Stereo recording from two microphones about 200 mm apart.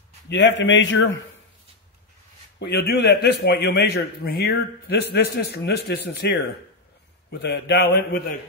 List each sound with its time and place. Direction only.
0.3 s a man's voice: 65° left (ahead or behind)
2.6 s a man's voice: 55° left (ahead or behind)
7.2 s a man's voice: 55° left (ahead or behind)